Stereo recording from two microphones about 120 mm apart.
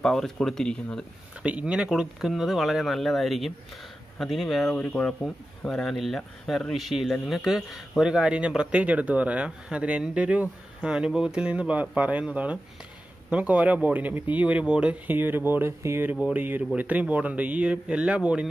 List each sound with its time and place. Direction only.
0.0 s speech: 5° left (ahead or behind)
1.4 s speech: 10° right (ahead or behind)